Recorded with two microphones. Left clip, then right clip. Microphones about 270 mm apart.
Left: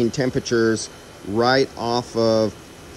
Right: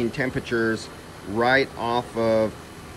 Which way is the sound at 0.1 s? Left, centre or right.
Centre.